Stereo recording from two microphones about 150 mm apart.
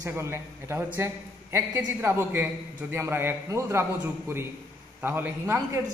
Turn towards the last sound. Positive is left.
turn(degrees=-15)  # may be behind; listen again after turning